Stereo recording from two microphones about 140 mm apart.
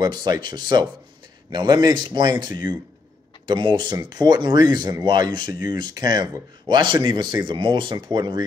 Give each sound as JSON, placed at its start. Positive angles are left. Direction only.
{"t": 0.0, "sound": "speech", "side_deg": -30}